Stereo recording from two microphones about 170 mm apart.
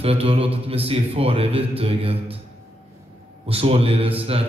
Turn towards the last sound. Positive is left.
turn(degrees=-35)  # may be behind; listen again after turning